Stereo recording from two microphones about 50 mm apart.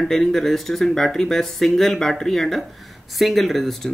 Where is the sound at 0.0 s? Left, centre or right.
Centre.